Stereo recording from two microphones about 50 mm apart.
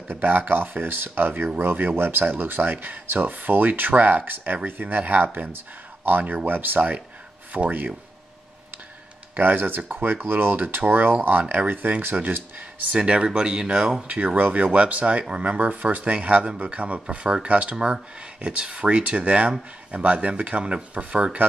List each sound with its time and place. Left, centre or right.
0.1 s speech: right
9.3 s speech: right
12.9 s speech: right
14.0 s speech: right